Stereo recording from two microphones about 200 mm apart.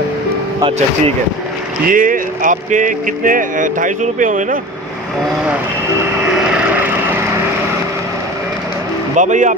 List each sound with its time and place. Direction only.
0.6 s speech: 25° right (ahead or behind)
1.9 s speech: 40° right (ahead or behind)
6.1 s vehicle: 5° right (ahead or behind)
9.1 s speech: 40° right (ahead or behind)